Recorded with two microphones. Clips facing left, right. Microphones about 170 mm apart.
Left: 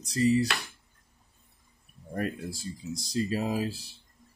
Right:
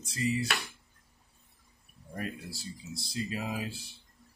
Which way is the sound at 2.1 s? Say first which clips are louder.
Left 6 dB; 50° left (ahead or behind).